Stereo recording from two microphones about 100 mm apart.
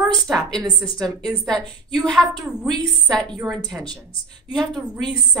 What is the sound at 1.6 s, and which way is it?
Speech, 45° right (ahead or behind).